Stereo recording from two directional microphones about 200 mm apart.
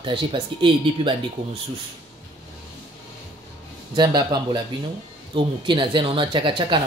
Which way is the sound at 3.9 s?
20° right (ahead or behind).